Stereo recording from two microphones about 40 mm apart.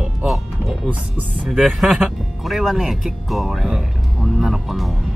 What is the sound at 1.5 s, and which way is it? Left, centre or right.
Speech, centre.